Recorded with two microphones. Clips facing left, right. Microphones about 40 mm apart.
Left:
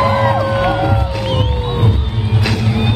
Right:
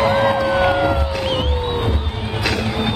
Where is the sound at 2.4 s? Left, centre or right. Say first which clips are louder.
Left 1 dB; centre.